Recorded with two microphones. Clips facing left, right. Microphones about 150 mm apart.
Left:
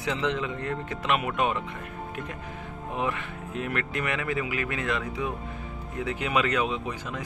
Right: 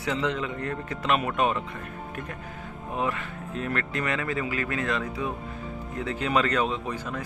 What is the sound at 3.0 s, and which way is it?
Speech, 20° left (ahead or behind).